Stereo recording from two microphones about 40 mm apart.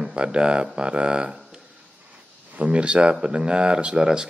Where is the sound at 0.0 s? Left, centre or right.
Right.